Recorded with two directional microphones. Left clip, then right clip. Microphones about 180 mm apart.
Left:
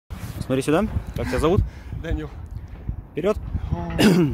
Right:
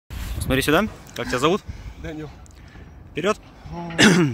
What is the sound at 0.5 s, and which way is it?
Speech, centre (ahead or behind).